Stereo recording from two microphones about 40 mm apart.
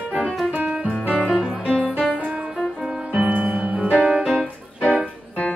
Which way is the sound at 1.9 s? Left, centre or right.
Right.